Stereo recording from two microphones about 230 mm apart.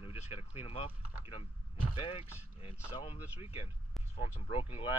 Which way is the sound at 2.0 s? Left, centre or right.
Left.